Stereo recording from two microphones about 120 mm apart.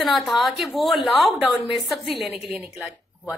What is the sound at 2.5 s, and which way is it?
Speech, 20° right (ahead or behind).